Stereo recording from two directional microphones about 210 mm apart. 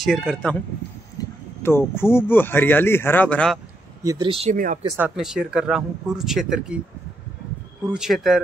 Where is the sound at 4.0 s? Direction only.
20° right (ahead or behind).